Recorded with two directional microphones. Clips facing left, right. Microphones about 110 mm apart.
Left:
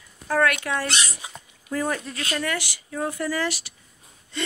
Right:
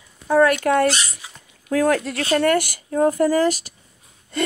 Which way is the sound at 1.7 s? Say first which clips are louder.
Right 8 dB; 90° right.